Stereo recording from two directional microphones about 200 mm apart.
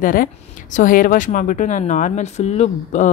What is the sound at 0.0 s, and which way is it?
Speech, 45° left (ahead or behind).